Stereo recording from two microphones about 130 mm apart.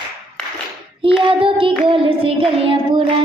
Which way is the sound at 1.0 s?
40° right (ahead or behind).